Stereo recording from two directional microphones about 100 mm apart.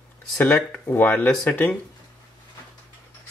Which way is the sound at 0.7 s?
20° left (ahead or behind).